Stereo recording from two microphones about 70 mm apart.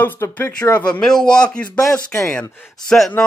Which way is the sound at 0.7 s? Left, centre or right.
Left.